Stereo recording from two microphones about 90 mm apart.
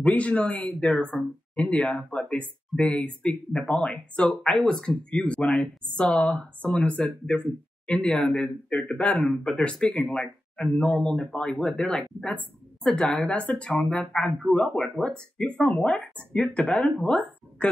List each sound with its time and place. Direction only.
0.0 s a woman's voice: 15° left (ahead or behind)